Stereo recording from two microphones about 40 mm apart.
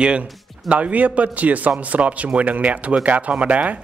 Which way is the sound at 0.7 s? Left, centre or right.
Right.